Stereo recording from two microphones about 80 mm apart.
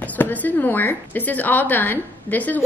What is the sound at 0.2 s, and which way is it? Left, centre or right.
A woman's voice, left.